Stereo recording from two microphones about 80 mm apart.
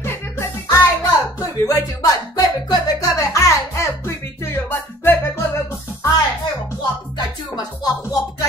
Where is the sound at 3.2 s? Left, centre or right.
Left.